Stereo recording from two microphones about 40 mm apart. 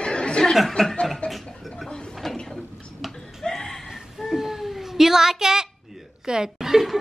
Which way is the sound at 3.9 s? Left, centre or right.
Centre.